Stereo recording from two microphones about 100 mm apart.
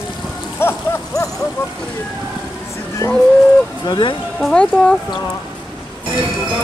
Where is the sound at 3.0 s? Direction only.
30° left (ahead or behind).